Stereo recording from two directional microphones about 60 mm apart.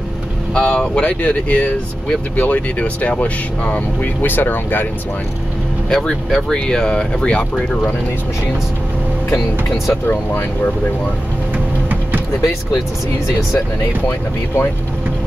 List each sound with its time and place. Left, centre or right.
0.6 s speech: centre; by 4.8 s left
5.9 s speech: centre
9.8 s speech: left